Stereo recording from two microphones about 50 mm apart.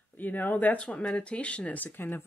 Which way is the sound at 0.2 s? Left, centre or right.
Left.